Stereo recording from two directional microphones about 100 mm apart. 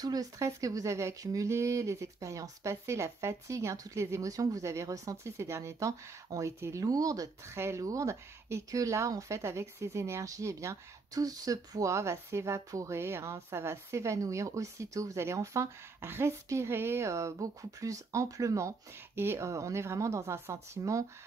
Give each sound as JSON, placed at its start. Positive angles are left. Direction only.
{"t": 0.0, "sound": "speech", "side_deg": -40}